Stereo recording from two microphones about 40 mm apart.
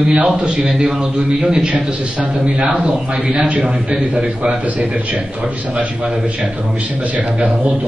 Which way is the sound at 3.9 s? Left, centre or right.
Centre.